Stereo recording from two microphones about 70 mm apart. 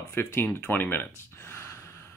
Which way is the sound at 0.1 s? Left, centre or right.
Left.